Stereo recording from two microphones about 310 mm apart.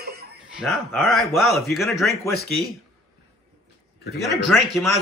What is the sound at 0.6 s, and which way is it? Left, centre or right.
Speech, centre.